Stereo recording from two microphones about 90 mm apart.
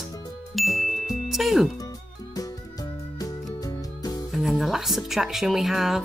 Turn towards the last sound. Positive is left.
turn(degrees=0)  # may be behind; listen again after turning